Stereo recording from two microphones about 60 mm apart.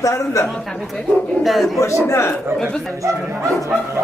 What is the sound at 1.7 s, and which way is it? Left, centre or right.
Speech, left.